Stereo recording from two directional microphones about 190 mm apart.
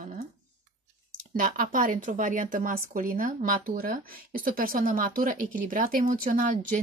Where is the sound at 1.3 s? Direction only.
45° right (ahead or behind).